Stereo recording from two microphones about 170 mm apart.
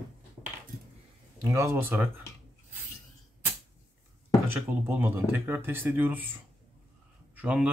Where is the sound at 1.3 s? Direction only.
20° right (ahead or behind).